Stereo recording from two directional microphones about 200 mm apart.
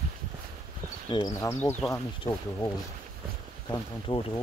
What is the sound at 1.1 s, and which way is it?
Speech, 20° left (ahead or behind).